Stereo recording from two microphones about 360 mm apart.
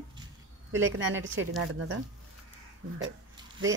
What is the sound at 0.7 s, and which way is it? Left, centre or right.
Speech, right.